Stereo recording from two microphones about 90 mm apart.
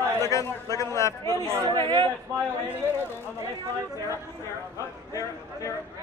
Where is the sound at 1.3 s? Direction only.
35° right (ahead or behind).